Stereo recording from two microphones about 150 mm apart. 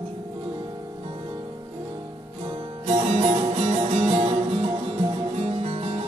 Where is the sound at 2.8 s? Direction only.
45° right (ahead or behind).